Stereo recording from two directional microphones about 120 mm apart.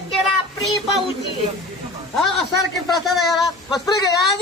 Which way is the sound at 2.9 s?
Centre (ahead or behind).